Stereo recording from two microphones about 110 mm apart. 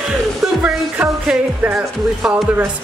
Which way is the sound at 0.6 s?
10° right (ahead or behind).